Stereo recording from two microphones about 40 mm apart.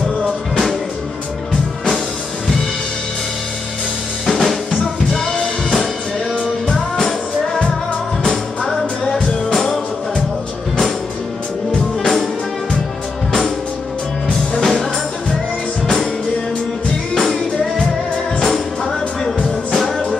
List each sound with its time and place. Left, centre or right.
4.3 s drum kit: centre
4.7 s music: centre
9.1 s music: centre
12.0 s music: centre
14.5 s music: centre
17.1 s music: centre